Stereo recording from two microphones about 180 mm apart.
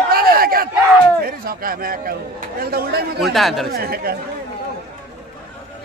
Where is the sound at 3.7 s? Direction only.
55° right (ahead or behind).